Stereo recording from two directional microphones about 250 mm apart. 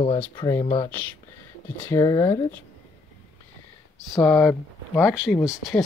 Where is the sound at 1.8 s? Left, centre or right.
Centre.